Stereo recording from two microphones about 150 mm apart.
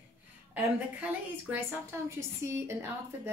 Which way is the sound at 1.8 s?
15° right (ahead or behind).